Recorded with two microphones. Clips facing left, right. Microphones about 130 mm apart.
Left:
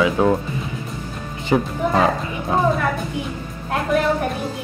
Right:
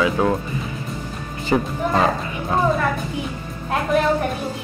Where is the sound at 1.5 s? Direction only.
10° left (ahead or behind).